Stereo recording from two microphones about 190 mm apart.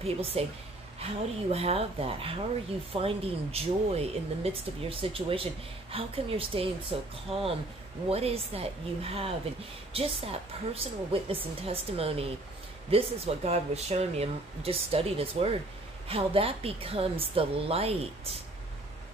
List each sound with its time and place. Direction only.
0.0 s speech: 30° right (ahead or behind)
1.5 s speech: 30° right (ahead or behind)